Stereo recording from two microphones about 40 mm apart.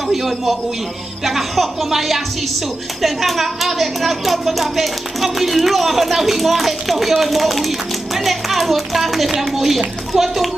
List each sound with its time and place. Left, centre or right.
0.1 s a woman's voice: centre